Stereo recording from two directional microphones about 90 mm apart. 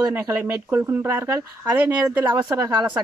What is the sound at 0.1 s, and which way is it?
Speech, 25° right (ahead or behind).